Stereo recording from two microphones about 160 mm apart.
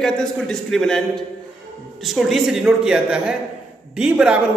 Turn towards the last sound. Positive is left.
turn(degrees=-5)  # may be behind; listen again after turning